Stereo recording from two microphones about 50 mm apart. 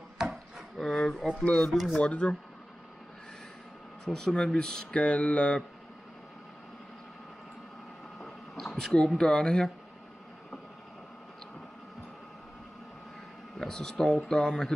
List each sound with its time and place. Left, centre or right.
0.3 s a sound: centre
1.4 s speech: left
1.7 s speech: centre
2.0 s speech: centre
4.0 s speech: centre
8.2 s a sound: centre
9.1 s speech: centre
13.6 s speech: centre